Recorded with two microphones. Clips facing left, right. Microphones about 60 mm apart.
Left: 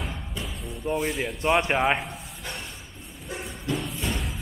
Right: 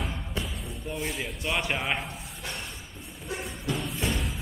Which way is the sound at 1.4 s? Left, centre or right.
Left.